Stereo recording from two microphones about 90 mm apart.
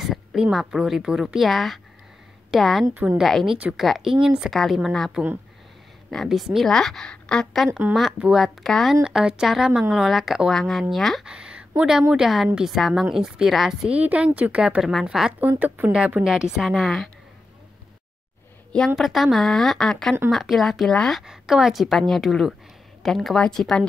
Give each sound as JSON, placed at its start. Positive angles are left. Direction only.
{"t": 0.0, "sound": "a woman's voice", "side_deg": -5}
{"t": 2.9, "sound": "a woman's voice", "side_deg": -20}
{"t": 3.2, "sound": "speech", "side_deg": 0}
{"t": 11.2, "sound": "a woman's voice", "side_deg": -10}
{"t": 18.9, "sound": "speech", "side_deg": 0}
{"t": 21.2, "sound": "speech", "side_deg": -5}